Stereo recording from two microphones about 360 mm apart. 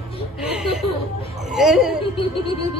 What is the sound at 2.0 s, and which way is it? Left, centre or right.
Speech, centre.